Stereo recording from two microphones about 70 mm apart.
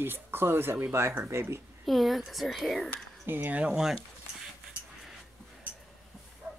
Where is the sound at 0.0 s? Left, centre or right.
Right.